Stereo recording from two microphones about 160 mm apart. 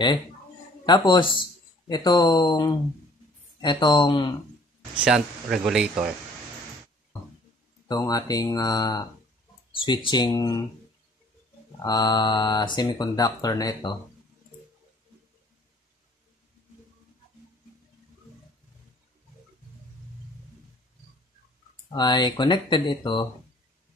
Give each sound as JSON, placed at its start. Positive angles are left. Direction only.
{"t": 0.8, "sound": "speech", "side_deg": 30}
{"t": 4.9, "sound": "speech", "side_deg": -5}
{"t": 7.9, "sound": "speech", "side_deg": 25}
{"t": 11.8, "sound": "speech", "side_deg": 25}
{"t": 21.9, "sound": "speech", "side_deg": 25}